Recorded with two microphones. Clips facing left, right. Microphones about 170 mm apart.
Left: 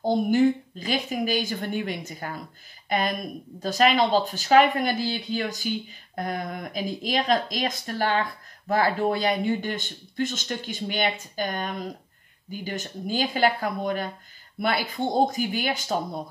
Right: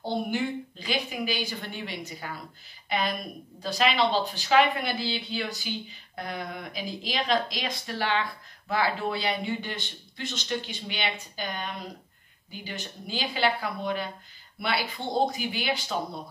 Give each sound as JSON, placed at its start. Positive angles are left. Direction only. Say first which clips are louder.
{"t": 0.0, "sound": "speech", "louder": "left 9 dB", "side_deg": 45}